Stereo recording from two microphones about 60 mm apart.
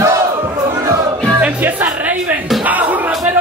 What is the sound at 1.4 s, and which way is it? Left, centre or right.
Music, right.